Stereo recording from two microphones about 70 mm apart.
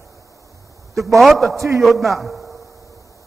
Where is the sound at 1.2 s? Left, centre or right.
Centre.